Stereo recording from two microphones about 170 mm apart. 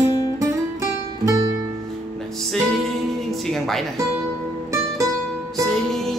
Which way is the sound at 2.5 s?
Centre (ahead or behind).